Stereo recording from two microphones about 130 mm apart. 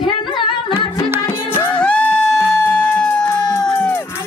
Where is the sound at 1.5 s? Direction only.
10° left (ahead or behind).